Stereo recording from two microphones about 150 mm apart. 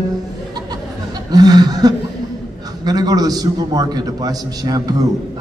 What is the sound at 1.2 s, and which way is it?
A man's voice, 25° right (ahead or behind).